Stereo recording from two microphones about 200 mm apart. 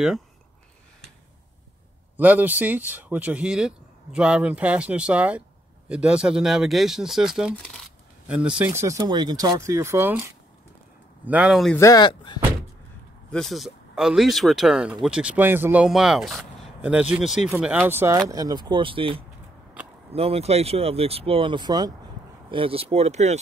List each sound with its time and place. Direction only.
2.1 s speech: 10° right (ahead or behind)
11.2 s speech: 5° right (ahead or behind)
11.7 s speech: 15° left (ahead or behind)
13.3 s speech: centre (ahead or behind); by 23.3 s 30° right (ahead or behind)